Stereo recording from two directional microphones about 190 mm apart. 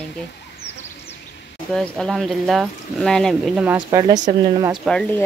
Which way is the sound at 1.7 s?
Centre (ahead or behind).